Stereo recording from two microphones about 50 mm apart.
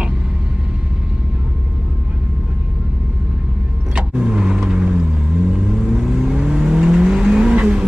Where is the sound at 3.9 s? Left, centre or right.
Right.